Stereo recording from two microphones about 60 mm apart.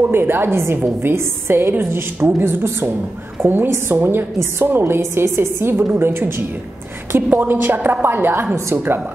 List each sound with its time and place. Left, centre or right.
0.0 s a woman's voice: right
8.5 s a woman's voice: right